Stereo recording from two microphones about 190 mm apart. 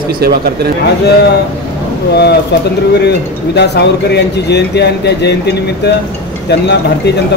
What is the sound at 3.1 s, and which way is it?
Speech, 60° left (ahead or behind).